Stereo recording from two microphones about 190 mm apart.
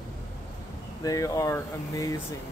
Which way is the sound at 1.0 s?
20° left (ahead or behind).